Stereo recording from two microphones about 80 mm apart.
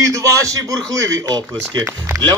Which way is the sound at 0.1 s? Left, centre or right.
Right.